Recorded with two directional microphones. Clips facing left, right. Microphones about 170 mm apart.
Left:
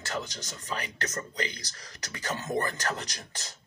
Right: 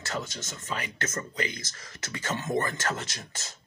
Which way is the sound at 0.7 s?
35° left (ahead or behind).